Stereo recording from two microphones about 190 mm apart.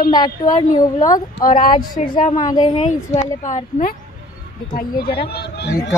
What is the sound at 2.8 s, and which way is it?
Speech, 40° left (ahead or behind).